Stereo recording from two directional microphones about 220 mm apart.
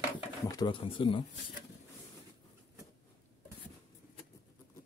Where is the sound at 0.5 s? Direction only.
20° left (ahead or behind).